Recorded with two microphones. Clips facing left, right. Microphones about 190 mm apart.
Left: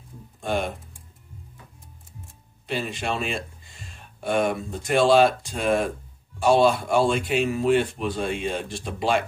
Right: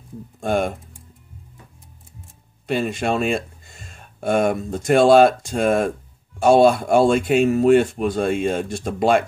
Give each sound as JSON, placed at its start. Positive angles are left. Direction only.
{"t": 0.4, "sound": "speech", "side_deg": -45}
{"t": 2.6, "sound": "speech", "side_deg": -45}